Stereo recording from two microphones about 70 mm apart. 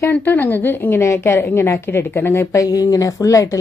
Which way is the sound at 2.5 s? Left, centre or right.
Left.